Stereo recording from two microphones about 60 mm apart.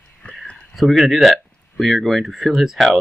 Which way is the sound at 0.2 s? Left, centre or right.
Left.